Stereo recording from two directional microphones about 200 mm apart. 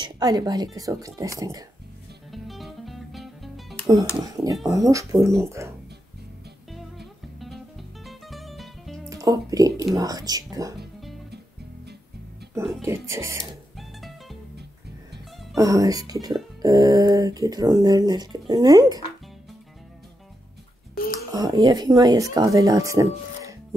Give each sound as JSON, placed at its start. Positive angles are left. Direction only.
{"t": 0.0, "sound": "a woman's voice", "side_deg": -20}
{"t": 2.3, "sound": "music", "side_deg": 0}
{"t": 4.2, "sound": "speech", "side_deg": -15}
{"t": 6.7, "sound": "music", "side_deg": 0}
{"t": 9.1, "sound": "speech", "side_deg": -15}
{"t": 12.5, "sound": "speech", "side_deg": -15}
{"t": 13.7, "sound": "music", "side_deg": 0}
{"t": 15.5, "sound": "speech", "side_deg": -15}
{"t": 20.9, "sound": "a sound", "side_deg": 45}
{"t": 21.3, "sound": "speech", "side_deg": -20}